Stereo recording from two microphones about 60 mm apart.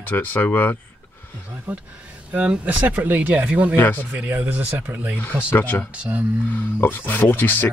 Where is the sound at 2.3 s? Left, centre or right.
Right.